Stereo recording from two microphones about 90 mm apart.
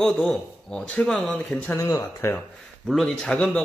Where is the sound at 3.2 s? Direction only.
10° left (ahead or behind).